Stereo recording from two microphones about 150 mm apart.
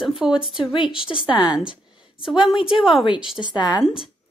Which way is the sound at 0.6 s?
35° left (ahead or behind).